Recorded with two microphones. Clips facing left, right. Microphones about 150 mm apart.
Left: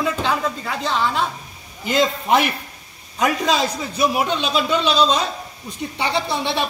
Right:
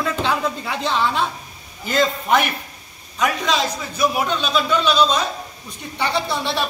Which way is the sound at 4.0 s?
30° left (ahead or behind).